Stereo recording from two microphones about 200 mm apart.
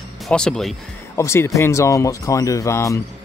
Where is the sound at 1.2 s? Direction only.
15° left (ahead or behind).